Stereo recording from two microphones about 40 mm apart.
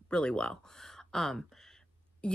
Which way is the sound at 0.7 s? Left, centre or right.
Centre.